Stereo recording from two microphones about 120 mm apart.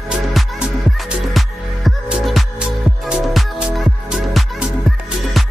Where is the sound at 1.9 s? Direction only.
5° right (ahead or behind).